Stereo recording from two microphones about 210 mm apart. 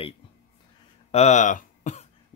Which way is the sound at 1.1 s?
35° left (ahead or behind).